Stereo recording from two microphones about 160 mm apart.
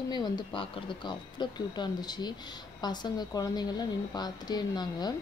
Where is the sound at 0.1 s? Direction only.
30° left (ahead or behind).